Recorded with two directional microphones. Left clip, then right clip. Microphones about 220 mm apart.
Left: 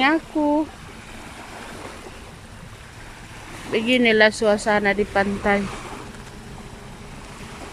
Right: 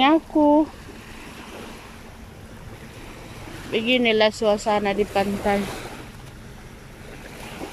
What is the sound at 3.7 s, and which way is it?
Speech, centre (ahead or behind).